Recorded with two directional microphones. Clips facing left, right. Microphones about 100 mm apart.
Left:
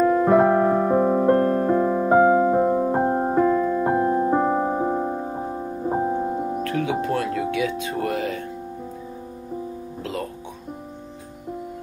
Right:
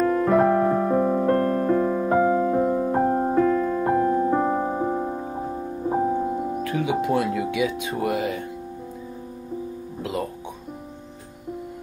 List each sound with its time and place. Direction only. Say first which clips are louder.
0.0 s music: left 2 dB; 10° left (ahead or behind); by 3.3 s 25° left (ahead or behind)
3.3 s music: left 1 dB; 15° left (ahead or behind)
3.9 s music: right 1 dB; 25° left (ahead or behind)
4.4 s music: left 2 dB; 10° left (ahead or behind); by 6.6 s 30° left (ahead or behind)
6.6 s music: right 2 dB; 15° right (ahead or behind)
7.9 s speech: even; 15° right (ahead or behind)